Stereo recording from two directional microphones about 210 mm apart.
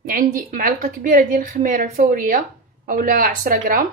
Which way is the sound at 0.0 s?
40° right (ahead or behind).